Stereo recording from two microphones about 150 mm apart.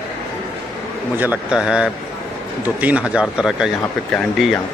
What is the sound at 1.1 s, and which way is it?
A man's voice, 10° right (ahead or behind).